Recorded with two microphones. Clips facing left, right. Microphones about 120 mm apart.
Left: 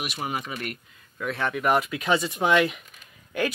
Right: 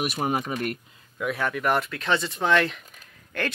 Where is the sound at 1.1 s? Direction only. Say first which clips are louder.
Right 1 dB; 10° right (ahead or behind).